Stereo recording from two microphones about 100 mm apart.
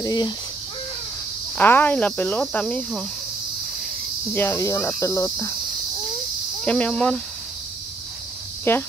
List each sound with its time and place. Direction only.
0.0 s speech: 40° left (ahead or behind)
1.6 s speech: 20° left (ahead or behind)
4.3 s speech: 25° left (ahead or behind)
6.6 s speech: 10° left (ahead or behind)
8.7 s speech: 25° left (ahead or behind)